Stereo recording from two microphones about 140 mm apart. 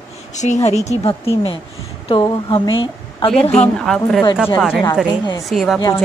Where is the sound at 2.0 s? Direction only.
35° left (ahead or behind).